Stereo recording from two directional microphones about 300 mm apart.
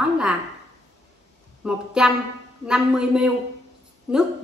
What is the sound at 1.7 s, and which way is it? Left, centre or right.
A woman's voice, centre.